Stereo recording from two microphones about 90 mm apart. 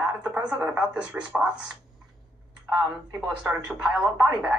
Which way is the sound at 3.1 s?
10° right (ahead or behind).